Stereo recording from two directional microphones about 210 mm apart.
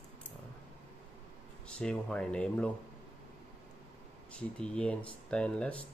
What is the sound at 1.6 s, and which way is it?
Speech, 5° left (ahead or behind).